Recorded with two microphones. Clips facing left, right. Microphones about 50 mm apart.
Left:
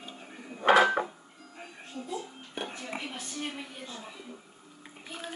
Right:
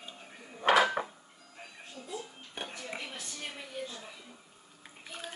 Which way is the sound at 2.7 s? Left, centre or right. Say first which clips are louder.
Left 3 dB; centre.